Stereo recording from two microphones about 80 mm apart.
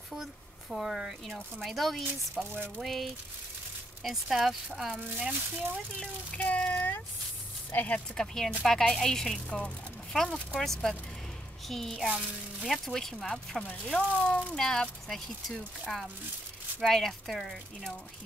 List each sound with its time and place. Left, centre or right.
0.1 s speech: centre
2.5 s a sound: right
2.8 s speech: centre
6.3 s speech: centre
8.2 s speech: centre